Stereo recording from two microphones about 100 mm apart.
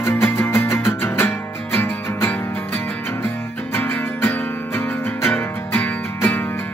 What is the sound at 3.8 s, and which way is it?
Music, 25° left (ahead or behind).